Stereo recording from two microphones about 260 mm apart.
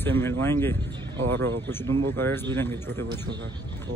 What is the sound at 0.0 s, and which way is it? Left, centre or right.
A man's voice, centre.